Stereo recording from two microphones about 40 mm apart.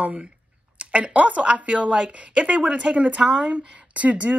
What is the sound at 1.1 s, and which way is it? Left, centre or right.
Speech, right.